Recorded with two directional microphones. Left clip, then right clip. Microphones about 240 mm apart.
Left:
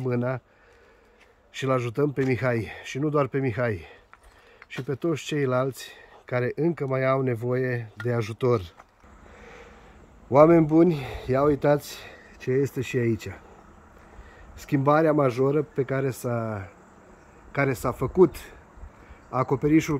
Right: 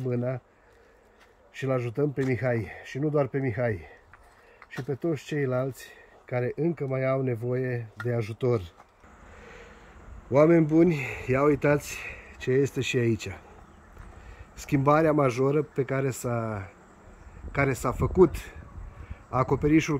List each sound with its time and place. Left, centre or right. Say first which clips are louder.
0.0 s speech: left 3 dB; centre
1.6 s speech: left 3 dB; centre
9.4 s vehicle: left 1 dB; centre
10.5 s speech: left 2 dB; centre
11.8 s speech: right 4 dB; left
12.4 s speech: even; centre
14.6 s speech: left 1 dB; centre